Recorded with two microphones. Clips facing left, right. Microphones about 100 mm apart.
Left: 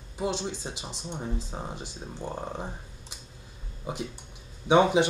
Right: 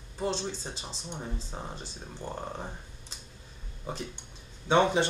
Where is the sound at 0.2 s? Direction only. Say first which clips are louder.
Left 2 dB; 15° left (ahead or behind).